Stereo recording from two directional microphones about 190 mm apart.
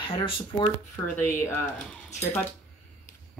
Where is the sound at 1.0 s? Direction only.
10° left (ahead or behind).